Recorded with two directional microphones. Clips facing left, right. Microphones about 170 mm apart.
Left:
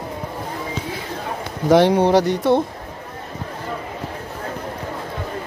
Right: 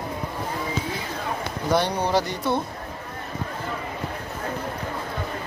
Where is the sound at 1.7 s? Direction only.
90° left.